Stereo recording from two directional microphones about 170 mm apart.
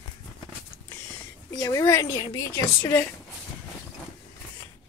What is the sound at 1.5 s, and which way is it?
A woman's voice, 20° left (ahead or behind).